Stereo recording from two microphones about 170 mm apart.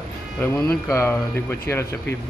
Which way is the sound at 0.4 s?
10° left (ahead or behind).